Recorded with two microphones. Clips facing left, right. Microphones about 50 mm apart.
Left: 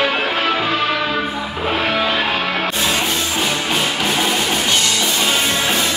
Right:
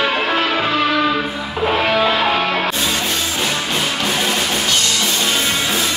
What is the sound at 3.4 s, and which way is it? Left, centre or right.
Music, centre.